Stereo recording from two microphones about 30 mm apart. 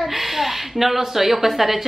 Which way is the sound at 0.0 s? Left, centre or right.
Centre.